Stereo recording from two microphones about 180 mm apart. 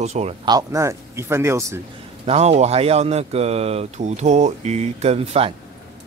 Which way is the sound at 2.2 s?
35° right (ahead or behind).